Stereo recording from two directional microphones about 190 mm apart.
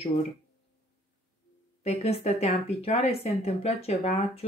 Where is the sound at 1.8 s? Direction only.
35° left (ahead or behind).